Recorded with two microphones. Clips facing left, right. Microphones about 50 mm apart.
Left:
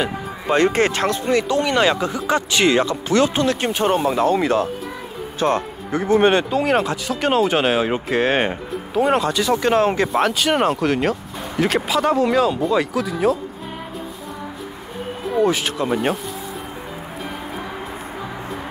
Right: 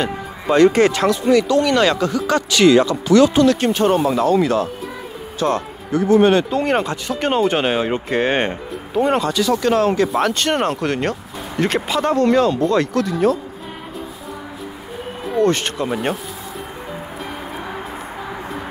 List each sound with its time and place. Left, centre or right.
0.5 s speech: left
1.5 s speech: left
3.6 s speech: centre
4.2 s speech: left
6.5 s speech: centre
9.3 s speech: left
10.0 s speech: centre
15.2 s speech: centre